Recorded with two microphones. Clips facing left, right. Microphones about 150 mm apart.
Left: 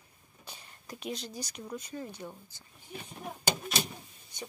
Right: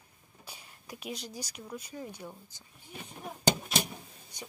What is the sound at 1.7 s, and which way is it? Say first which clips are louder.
Speech: left 1 dB; 10° right (ahead or behind).